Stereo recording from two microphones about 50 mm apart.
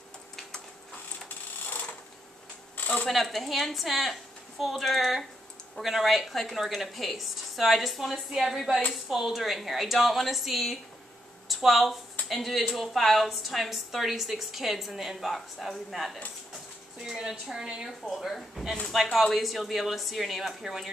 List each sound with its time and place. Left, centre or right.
2.8 s a sound: left
3.1 s a woman's voice: centre
17.2 s a woman's voice: centre
18.1 s a woman's voice: centre